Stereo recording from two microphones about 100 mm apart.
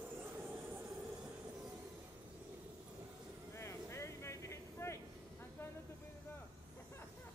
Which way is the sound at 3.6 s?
30° left (ahead or behind).